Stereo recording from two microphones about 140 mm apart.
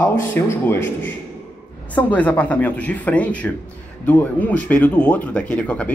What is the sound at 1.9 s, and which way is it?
Speech, 10° left (ahead or behind).